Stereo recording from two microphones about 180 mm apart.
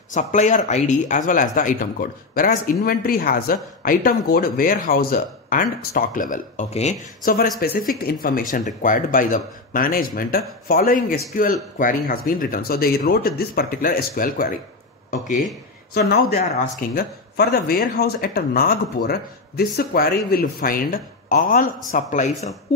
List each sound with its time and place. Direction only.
0.1 s speech: 45° left (ahead or behind)
7.6 s speech: 55° left (ahead or behind)
15.9 s speech: 60° left (ahead or behind); by 22.3 s 45° left (ahead or behind)